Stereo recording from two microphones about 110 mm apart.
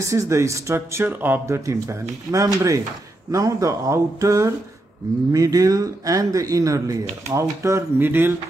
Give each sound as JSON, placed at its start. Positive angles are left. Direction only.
{"t": 0.0, "sound": "speech", "side_deg": -30}